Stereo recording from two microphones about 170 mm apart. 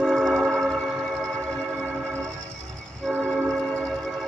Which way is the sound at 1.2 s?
5° left (ahead or behind).